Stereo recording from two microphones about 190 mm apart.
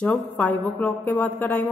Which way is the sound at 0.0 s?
5° left (ahead or behind).